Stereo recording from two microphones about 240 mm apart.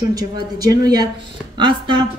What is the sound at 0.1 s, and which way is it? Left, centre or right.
A woman's voice, centre.